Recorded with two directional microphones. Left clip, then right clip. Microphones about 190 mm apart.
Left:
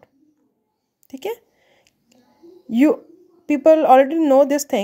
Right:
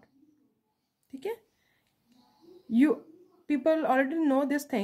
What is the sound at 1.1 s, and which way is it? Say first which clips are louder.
Speech: left 8 dB; 35° left (ahead or behind).